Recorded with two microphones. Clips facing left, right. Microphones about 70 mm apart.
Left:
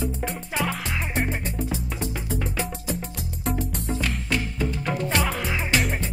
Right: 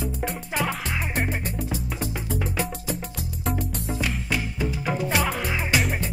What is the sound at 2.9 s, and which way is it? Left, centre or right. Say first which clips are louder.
Music: even; right.